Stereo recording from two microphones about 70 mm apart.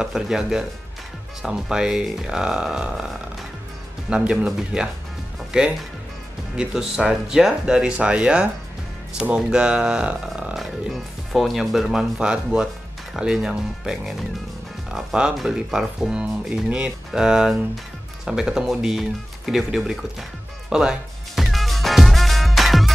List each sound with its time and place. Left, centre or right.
0.0 s speech: centre
4.1 s speech: centre
20.7 s music: centre